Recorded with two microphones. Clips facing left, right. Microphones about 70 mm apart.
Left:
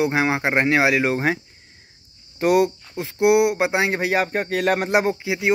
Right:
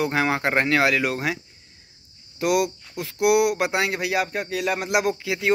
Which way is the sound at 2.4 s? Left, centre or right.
Left.